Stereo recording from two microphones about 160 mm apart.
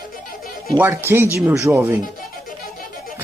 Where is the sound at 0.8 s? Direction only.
15° right (ahead or behind).